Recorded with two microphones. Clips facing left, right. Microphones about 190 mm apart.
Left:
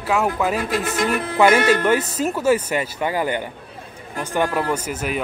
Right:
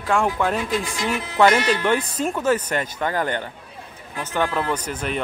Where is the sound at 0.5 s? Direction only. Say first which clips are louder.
Left 3 dB; 55° left (ahead or behind).